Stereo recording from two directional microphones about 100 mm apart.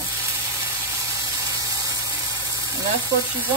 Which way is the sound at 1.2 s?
35° right (ahead or behind).